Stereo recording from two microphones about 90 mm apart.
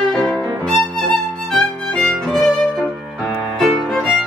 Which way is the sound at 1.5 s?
5° left (ahead or behind).